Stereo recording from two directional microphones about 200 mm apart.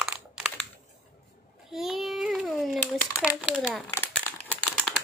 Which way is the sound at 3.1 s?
15° left (ahead or behind).